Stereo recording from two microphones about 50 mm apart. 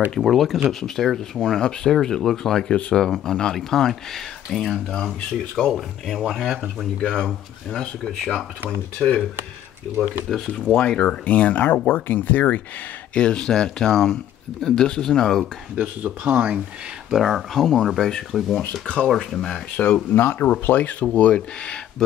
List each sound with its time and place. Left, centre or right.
0.2 s speech: centre
7.0 s speech: centre
10.3 s speech: centre
10.8 s speech: centre
11.1 s speech: left
13.1 s speech: centre
16.0 s speech: right
17.1 s speech: centre
19.8 s speech: left
20.2 s speech: left
21.1 s speech: left